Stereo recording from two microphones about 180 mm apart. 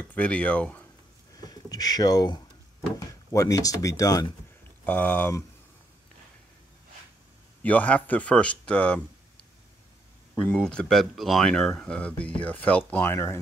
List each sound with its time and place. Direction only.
0.1 s speech: 5° left (ahead or behind)
1.4 s speech: 20° left (ahead or behind)
4.8 s speech: 10° left (ahead or behind)
7.6 s speech: 10° left (ahead or behind)
10.4 s speech: 5° left (ahead or behind)